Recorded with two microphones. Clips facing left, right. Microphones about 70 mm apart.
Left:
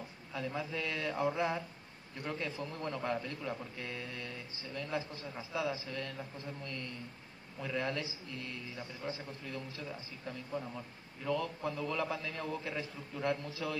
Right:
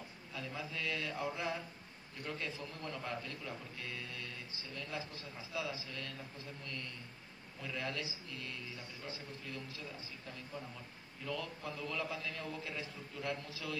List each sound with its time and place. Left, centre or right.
0.3 s a man's voice: left
2.5 s a man's voice: left
7.6 s a man's voice: left
11.2 s a man's voice: left